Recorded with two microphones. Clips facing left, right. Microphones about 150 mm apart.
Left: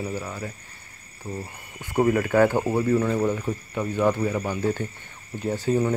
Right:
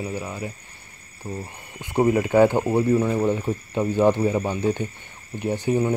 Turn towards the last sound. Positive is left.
turn(degrees=-15)  # may be behind; listen again after turning